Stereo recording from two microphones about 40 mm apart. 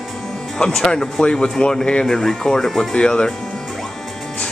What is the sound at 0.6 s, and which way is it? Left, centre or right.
Speech, centre.